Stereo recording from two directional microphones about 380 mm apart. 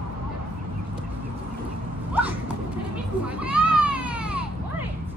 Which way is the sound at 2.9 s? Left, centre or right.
Centre.